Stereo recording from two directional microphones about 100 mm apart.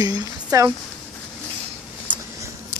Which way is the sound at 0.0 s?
35° right (ahead or behind).